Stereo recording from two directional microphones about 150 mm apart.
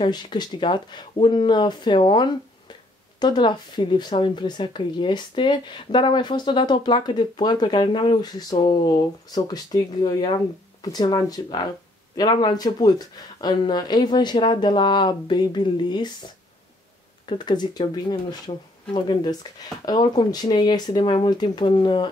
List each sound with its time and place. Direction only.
0.0 s speech: 30° left (ahead or behind)
17.3 s speech: 30° left (ahead or behind)